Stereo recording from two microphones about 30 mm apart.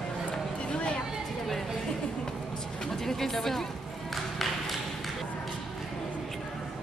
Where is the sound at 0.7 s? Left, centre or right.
Left.